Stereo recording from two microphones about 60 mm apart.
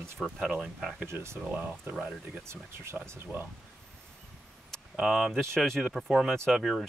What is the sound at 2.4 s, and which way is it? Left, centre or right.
Speech, right.